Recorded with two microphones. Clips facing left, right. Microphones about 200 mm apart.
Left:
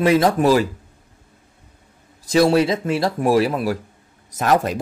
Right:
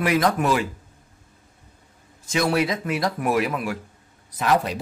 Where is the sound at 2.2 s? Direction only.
30° left (ahead or behind).